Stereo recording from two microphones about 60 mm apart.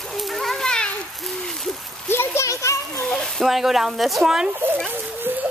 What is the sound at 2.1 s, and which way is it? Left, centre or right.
Splash, left.